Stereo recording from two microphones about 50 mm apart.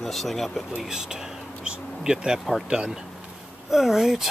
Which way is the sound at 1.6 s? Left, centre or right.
Centre.